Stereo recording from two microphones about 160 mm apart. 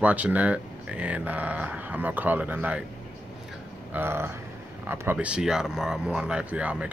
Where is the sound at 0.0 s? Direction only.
10° right (ahead or behind).